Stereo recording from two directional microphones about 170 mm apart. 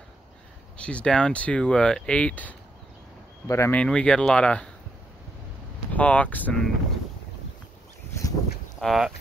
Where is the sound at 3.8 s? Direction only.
5° left (ahead or behind).